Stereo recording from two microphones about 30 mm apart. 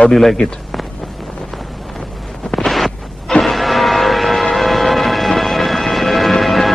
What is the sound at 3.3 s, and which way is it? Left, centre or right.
Music, centre.